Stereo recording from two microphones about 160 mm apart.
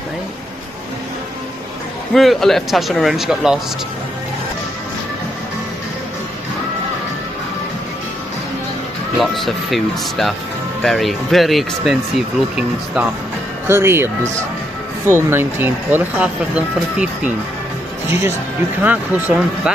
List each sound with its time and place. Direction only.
2.1 s speech: centre (ahead or behind)
9.2 s speech: centre (ahead or behind)